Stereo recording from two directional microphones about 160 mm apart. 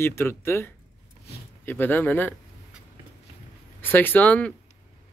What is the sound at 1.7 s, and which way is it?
Speech, 10° left (ahead or behind).